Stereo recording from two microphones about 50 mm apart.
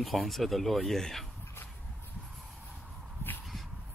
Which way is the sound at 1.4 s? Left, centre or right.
Left.